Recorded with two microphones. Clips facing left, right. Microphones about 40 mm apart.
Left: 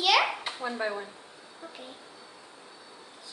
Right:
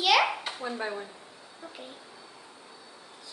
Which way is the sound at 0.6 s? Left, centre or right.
Centre.